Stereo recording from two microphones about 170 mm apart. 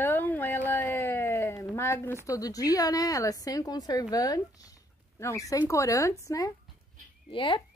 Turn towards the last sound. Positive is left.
turn(degrees=30)  # may be behind; listen again after turning